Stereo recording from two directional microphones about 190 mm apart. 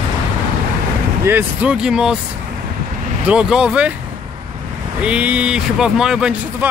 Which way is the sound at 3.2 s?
5° right (ahead or behind).